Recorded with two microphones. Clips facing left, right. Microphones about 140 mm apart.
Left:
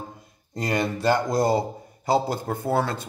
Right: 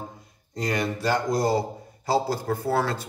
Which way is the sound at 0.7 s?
25° left (ahead or behind).